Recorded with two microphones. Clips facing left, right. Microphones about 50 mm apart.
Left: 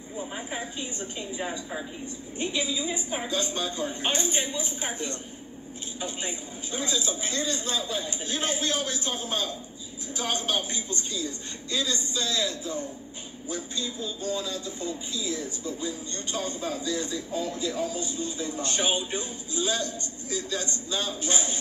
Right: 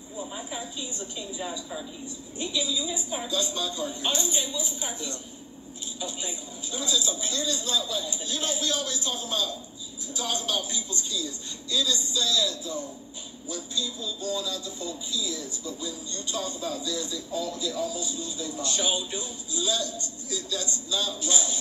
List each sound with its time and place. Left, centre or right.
0.3 s a woman's voice: left